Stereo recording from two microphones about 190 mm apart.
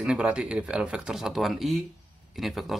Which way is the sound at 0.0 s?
5° right (ahead or behind).